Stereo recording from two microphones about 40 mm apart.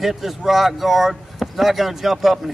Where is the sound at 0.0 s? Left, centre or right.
Centre.